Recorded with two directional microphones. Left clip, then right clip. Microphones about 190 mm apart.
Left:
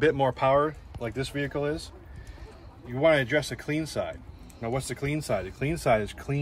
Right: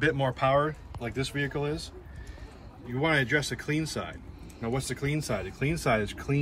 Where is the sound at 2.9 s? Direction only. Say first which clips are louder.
Left 4 dB; 50° left (ahead or behind).